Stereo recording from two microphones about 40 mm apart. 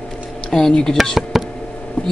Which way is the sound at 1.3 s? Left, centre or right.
Centre.